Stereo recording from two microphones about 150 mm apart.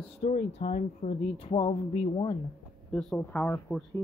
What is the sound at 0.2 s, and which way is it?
Speech, 45° left (ahead or behind).